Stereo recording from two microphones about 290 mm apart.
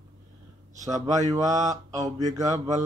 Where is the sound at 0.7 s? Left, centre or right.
Centre.